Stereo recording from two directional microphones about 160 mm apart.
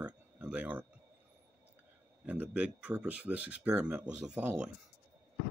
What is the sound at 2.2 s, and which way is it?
Speech, 10° right (ahead or behind).